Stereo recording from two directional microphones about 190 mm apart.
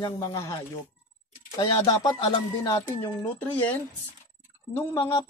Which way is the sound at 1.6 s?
20° left (ahead or behind).